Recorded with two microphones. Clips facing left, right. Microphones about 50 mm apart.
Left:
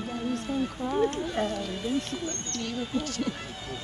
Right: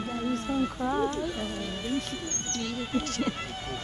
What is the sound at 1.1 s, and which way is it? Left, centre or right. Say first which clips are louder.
Speech: left 3 dB; left.